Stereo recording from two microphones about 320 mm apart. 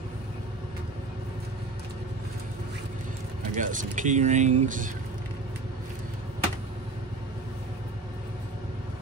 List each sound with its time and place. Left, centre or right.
3.5 s speech: right